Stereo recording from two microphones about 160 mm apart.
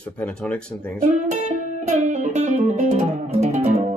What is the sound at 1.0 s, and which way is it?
Music, 50° right (ahead or behind).